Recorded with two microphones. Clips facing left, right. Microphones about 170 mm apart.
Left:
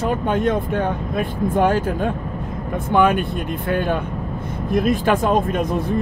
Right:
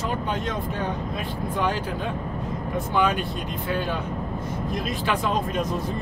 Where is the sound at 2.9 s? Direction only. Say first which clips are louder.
Left 8 dB; 55° left (ahead or behind).